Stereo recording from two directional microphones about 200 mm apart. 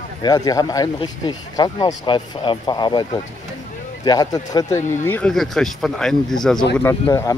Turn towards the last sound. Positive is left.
turn(degrees=15)  # may be behind; listen again after turning